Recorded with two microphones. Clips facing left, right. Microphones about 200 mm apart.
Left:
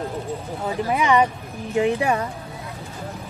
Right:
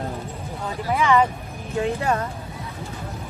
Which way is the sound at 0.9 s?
15° left (ahead or behind).